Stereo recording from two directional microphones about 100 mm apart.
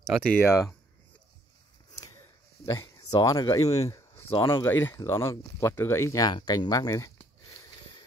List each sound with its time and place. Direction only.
0.5 s speech: 30° left (ahead or behind)
2.6 s speech: 30° left (ahead or behind)
3.1 s speech: 40° left (ahead or behind)
4.3 s speech: 60° left (ahead or behind)
4.6 s speech: 25° left (ahead or behind)